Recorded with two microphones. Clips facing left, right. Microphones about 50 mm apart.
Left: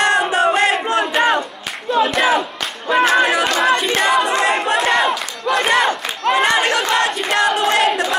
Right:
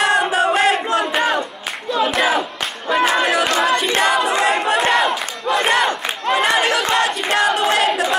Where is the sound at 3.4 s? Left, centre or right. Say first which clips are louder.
Left 1 dB; centre.